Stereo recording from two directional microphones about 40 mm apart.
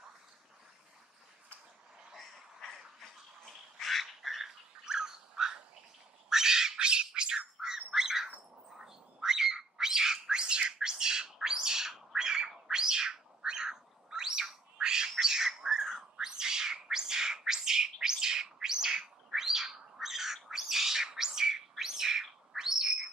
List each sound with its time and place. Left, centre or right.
2.1 s a sound: centre
3.8 s frog: centre
4.8 s frog: centre
6.2 s squawk: centre
7.2 s bird: right
8.7 s cat: centre
11.3 s bird: centre